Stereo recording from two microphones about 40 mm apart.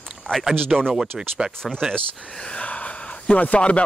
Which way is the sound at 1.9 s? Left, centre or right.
Left.